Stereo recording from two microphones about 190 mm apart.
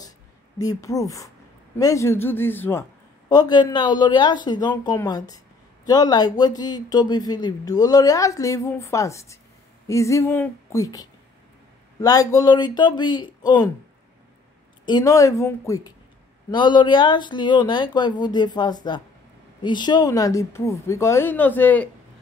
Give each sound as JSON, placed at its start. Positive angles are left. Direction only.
{"t": 0.6, "sound": "speech", "side_deg": 20}
{"t": 3.3, "sound": "speech", "side_deg": 20}
{"t": 14.9, "sound": "speech", "side_deg": 20}